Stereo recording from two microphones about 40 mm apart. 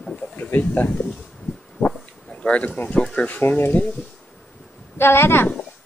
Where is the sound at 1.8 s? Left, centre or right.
Left.